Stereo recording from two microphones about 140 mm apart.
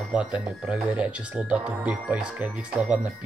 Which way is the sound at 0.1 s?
10° right (ahead or behind).